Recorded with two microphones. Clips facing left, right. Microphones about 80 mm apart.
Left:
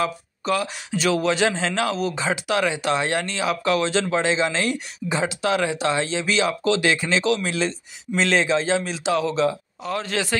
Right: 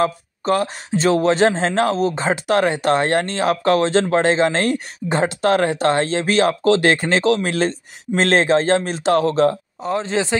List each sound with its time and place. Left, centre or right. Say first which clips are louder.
0.0 s speech: right 5 dB; right
9.9 s a man's voice: right 5 dB; right